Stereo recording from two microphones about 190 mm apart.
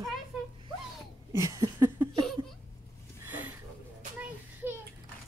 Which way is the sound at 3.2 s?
10° right (ahead or behind).